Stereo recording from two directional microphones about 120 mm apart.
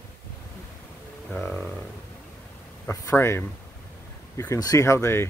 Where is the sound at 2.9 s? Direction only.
25° left (ahead or behind).